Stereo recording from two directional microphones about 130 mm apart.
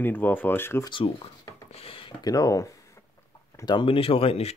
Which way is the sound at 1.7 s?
45° left (ahead or behind).